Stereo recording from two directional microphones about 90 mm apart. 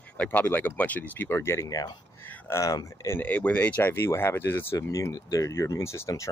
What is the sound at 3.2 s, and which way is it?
Speech, 20° left (ahead or behind).